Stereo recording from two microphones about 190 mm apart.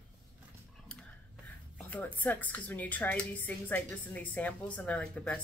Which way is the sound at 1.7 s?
10° left (ahead or behind).